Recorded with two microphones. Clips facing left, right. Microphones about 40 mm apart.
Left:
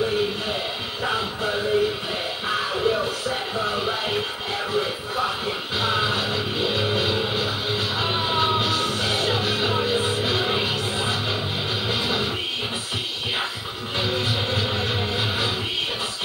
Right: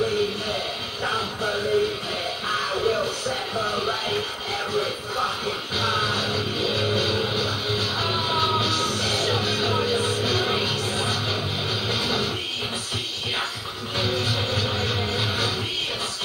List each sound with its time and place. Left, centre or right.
1.0 s a sound: left
2.4 s speech: left
5.8 s music: left
13.9 s music: left